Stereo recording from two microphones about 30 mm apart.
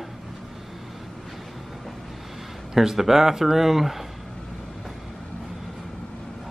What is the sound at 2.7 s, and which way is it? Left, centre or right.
Speech, centre.